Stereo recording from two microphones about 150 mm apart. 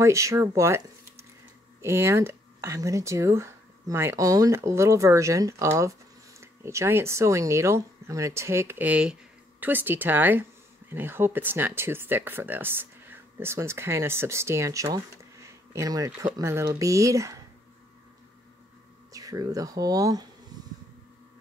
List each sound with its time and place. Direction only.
0.0 s speech: 20° right (ahead or behind)
19.1 s speech: 25° right (ahead or behind)